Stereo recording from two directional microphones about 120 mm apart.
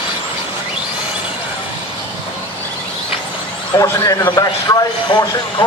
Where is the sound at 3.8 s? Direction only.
30° left (ahead or behind).